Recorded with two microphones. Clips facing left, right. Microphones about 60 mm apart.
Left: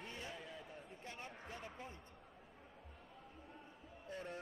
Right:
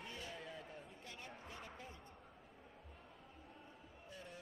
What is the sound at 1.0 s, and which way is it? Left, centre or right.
Speech, left.